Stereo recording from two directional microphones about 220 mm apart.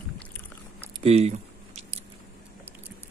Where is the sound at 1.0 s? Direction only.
30° right (ahead or behind).